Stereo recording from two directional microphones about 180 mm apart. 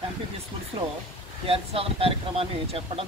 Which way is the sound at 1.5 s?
30° right (ahead or behind).